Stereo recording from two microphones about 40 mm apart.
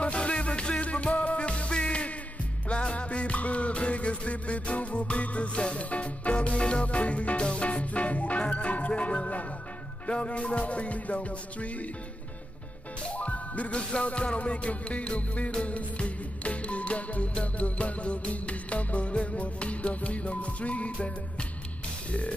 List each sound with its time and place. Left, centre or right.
0.0 s music: left
13.1 s music: left